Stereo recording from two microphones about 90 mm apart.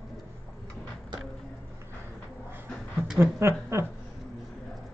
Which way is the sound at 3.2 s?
30° right (ahead or behind).